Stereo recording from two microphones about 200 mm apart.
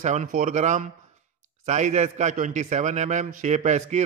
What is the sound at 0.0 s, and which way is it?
A man's voice, 35° right (ahead or behind).